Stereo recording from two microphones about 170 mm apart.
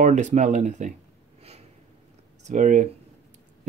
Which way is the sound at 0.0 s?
45° right (ahead or behind).